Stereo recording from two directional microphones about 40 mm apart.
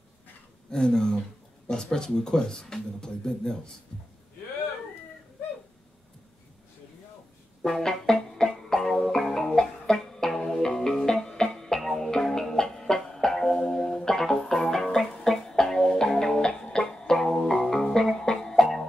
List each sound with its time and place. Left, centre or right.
0.7 s speech: centre
7.6 s music: centre